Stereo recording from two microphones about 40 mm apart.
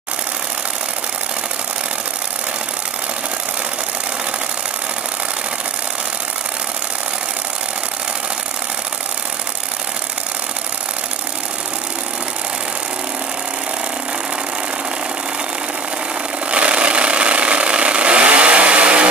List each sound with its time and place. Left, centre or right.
16.4 s vehicle: right